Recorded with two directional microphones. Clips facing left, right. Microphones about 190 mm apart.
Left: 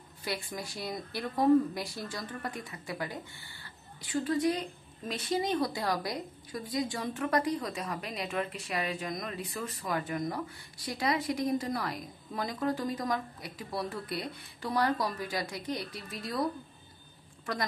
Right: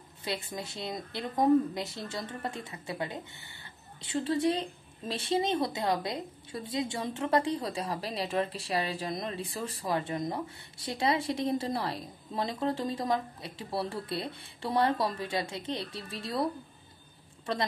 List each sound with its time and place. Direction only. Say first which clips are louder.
0.2 s a woman's voice: right 1 dB; 25° right (ahead or behind)